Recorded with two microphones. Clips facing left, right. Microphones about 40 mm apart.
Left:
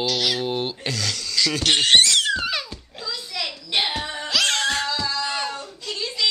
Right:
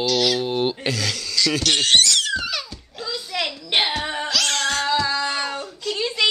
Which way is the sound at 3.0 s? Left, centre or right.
Centre.